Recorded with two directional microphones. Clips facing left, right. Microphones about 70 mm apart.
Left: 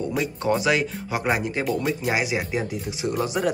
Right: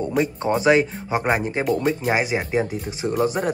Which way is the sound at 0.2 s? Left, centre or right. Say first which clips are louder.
Right 3 dB; right.